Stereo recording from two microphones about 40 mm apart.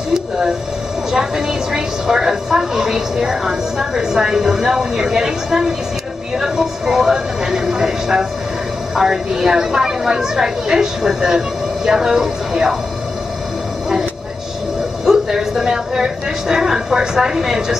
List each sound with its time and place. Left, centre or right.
1.1 s a woman's voice: centre
15.0 s a sound: centre
15.6 s a woman's voice: centre